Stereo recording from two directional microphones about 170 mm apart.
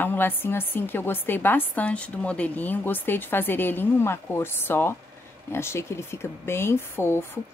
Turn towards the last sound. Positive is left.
turn(degrees=15)  # may be behind; listen again after turning